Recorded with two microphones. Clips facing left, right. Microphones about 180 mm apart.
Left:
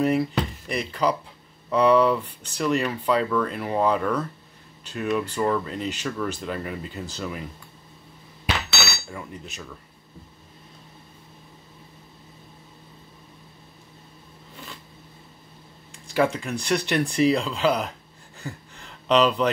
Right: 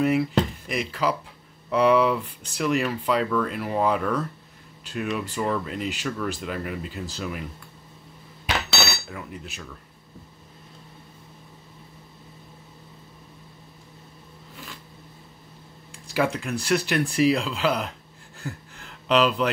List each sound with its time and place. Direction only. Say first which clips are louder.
0.0 s speech: right 1 dB; 5° right (ahead or behind)
9.1 s speech: even; 5° right (ahead or behind)
16.2 s speech: left 2 dB; centre (ahead or behind)
18.4 s a sound: right 1 dB; 5° right (ahead or behind)